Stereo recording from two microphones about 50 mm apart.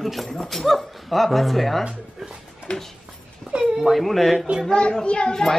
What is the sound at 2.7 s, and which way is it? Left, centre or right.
Speech, left.